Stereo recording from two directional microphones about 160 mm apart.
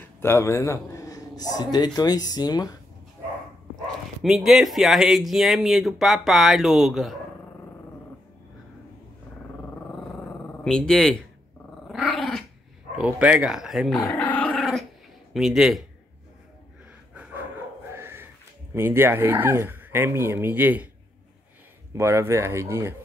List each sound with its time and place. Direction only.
0.0 s a man's voice: 15° left (ahead or behind)
3.8 s speech: centre (ahead or behind)
10.6 s speech: 5° left (ahead or behind)
11.9 s dog: centre (ahead or behind)
12.9 s speech: 5° right (ahead or behind)
14.0 s dog: 5° left (ahead or behind)
15.3 s speech: centre (ahead or behind)
17.9 s speech: 15° right (ahead or behind)
21.9 s speech: 15° right (ahead or behind)